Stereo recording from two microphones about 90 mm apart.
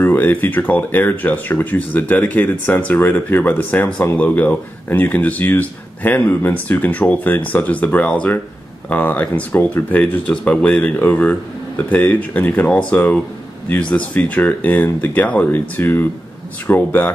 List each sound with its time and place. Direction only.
0.0 s speech: 20° left (ahead or behind)